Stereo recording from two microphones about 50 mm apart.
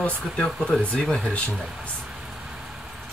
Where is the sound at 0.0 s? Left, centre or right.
Left.